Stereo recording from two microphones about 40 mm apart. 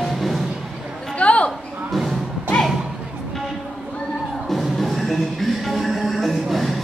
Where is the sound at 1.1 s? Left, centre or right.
Left.